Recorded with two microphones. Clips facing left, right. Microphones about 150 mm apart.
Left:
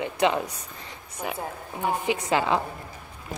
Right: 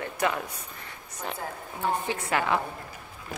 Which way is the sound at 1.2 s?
10° left (ahead or behind).